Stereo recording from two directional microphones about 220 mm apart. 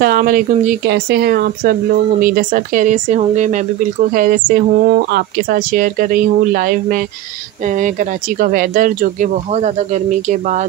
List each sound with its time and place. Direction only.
0.0 s speech: 40° right (ahead or behind)